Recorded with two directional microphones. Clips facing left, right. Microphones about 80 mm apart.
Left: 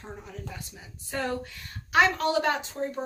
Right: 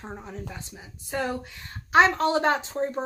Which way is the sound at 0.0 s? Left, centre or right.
Right.